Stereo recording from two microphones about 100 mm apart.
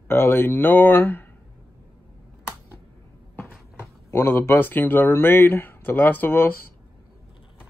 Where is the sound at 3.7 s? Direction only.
25° left (ahead or behind).